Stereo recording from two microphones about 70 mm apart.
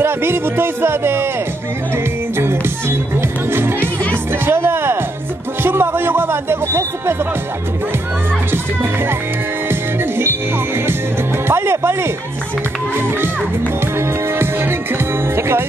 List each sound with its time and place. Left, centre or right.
0.0 s speech: right
2.3 s music: right
5.6 s speech: right
9.7 s music: right
11.4 s speech: right
13.9 s speech: right